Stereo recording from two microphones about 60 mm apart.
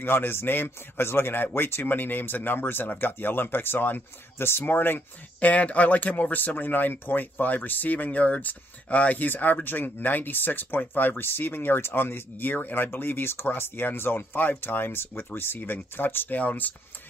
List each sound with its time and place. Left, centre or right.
0.0 s speech: left